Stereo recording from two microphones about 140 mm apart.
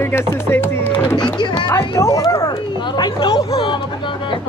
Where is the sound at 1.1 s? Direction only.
35° left (ahead or behind).